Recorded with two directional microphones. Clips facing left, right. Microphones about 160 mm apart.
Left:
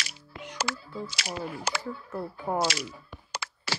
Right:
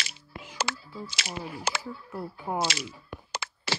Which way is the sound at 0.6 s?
25° right (ahead or behind).